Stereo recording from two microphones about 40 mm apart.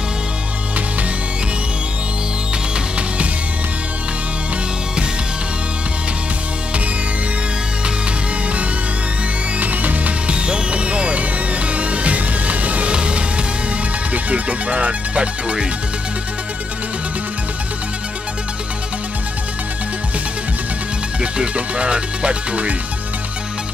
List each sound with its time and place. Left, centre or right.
9.6 s music: right
21.2 s speech: right